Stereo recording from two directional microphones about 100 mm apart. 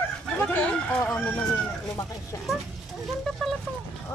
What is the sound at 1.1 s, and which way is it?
Speech, 10° left (ahead or behind).